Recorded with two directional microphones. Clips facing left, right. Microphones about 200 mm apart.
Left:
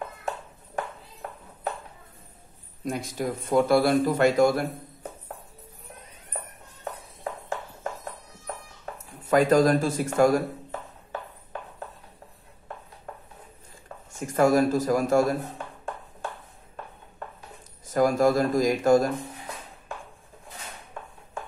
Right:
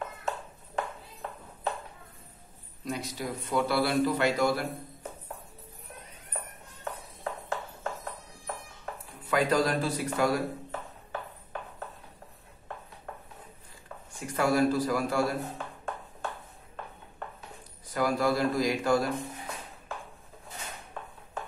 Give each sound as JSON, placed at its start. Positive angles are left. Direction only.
{"t": 2.8, "sound": "a man's voice", "side_deg": 50}
{"t": 8.9, "sound": "speech", "side_deg": 45}
{"t": 14.1, "sound": "a man's voice", "side_deg": 45}
{"t": 17.8, "sound": "a man's voice", "side_deg": 45}